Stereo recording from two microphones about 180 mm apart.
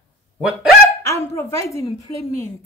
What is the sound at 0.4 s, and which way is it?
Speech, 5° right (ahead or behind).